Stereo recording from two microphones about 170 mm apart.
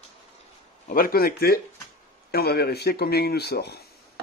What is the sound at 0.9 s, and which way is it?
Speech, 60° left (ahead or behind).